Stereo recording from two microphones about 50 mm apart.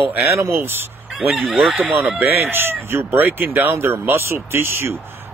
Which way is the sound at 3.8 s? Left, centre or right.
Right.